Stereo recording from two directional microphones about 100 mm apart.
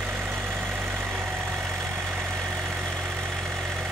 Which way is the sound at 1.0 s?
Centre (ahead or behind).